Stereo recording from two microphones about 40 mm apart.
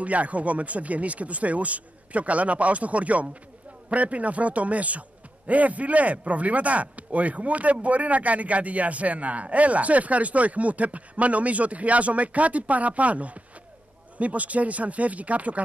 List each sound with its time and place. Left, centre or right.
0.0 s speech: right